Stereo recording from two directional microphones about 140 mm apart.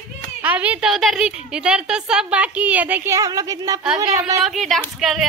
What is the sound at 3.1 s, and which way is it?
Speech, 25° right (ahead or behind).